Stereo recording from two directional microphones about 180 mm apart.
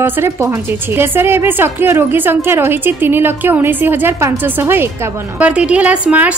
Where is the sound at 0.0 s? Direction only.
15° right (ahead or behind).